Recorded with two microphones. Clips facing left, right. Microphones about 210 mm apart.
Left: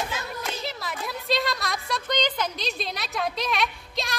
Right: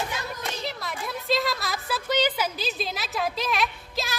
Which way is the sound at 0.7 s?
Centre (ahead or behind).